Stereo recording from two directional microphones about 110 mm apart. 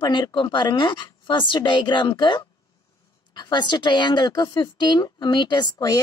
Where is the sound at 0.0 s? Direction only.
45° left (ahead or behind).